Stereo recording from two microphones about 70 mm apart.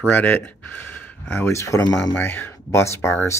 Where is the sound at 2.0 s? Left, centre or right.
Left.